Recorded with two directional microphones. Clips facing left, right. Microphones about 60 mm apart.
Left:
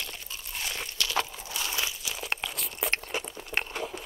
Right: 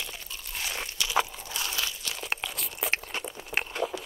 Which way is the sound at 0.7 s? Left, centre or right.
Centre.